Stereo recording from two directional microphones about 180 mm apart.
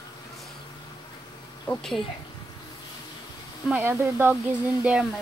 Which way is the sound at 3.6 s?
10° right (ahead or behind).